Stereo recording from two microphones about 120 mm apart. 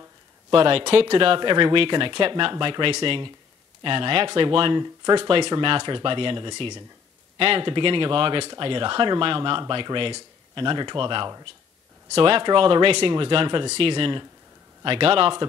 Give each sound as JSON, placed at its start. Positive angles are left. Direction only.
{"t": 0.5, "sound": "speech", "side_deg": -45}
{"t": 5.0, "sound": "speech", "side_deg": -35}
{"t": 5.3, "sound": "speech", "side_deg": -45}